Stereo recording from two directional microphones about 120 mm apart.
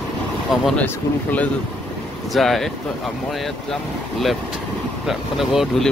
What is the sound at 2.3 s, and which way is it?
Speech, centre (ahead or behind).